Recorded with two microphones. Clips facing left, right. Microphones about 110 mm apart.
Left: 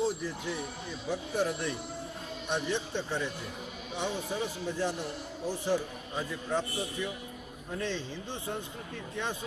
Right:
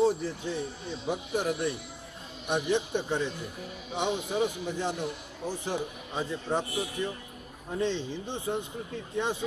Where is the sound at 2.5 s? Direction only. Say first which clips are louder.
Right 5 dB; 15° right (ahead or behind).